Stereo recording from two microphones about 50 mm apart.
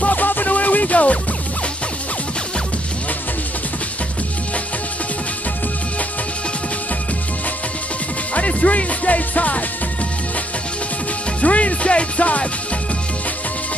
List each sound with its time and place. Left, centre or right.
0.0 s music: left
8.4 s music: left
11.4 s music: left